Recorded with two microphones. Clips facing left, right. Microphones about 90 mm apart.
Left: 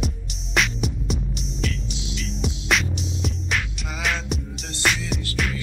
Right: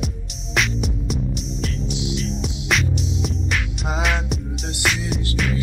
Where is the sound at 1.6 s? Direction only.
35° right (ahead or behind).